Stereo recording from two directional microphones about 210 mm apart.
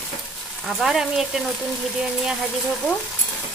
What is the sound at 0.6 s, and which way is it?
Frying, centre (ahead or behind).